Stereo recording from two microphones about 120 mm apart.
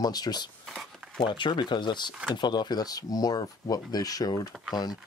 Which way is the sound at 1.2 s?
40° left (ahead or behind).